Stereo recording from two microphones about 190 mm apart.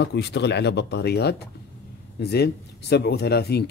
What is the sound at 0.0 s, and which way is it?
Speech, 65° left (ahead or behind).